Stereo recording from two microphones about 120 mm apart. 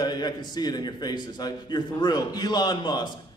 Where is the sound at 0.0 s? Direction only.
35° left (ahead or behind).